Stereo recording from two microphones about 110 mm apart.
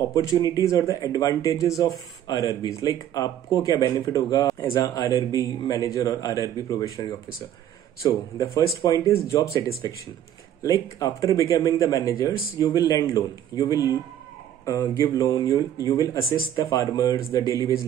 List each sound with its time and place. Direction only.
0.1 s speech: 30° left (ahead or behind)